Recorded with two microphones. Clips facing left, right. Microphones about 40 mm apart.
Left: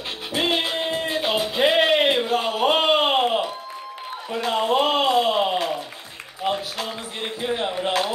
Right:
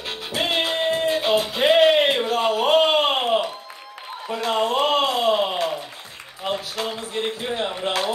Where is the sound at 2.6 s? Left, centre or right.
Left.